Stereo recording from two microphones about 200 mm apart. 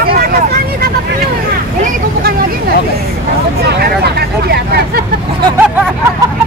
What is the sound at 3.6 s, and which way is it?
Vehicle, 55° right (ahead or behind).